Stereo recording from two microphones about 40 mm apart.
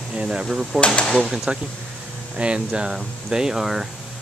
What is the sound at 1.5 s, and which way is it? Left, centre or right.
Speech, right.